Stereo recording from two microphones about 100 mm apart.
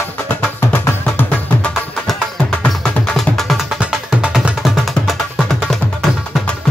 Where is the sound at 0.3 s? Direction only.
25° left (ahead or behind).